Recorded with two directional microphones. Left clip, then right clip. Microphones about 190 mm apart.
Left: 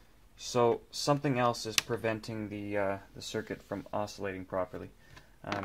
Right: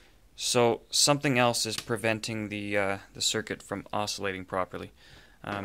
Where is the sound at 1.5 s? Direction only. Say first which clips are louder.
Right 2 dB; 45° right (ahead or behind).